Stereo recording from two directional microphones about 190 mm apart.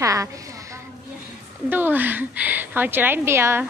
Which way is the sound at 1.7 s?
10° right (ahead or behind).